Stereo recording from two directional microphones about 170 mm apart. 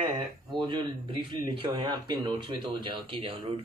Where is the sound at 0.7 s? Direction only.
30° right (ahead or behind).